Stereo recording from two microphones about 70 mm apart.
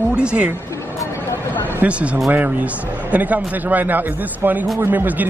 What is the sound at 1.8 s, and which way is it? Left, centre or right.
Speech, centre.